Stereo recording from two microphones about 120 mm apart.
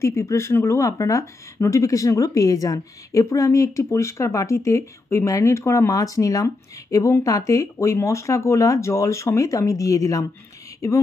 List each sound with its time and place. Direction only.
0.0 s speech: 25° left (ahead or behind)